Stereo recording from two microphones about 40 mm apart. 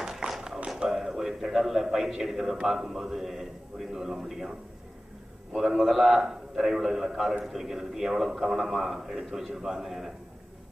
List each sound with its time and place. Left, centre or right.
0.0 s tap: centre
0.8 s a man's voice: centre